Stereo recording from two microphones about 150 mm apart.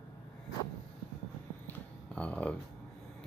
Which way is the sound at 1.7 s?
10° left (ahead or behind).